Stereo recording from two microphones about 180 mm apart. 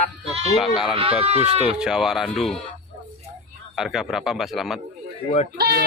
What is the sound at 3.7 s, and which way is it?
A man's voice, centre (ahead or behind).